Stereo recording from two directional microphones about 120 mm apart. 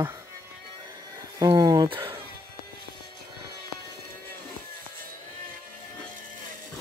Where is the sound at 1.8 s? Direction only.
45° right (ahead or behind).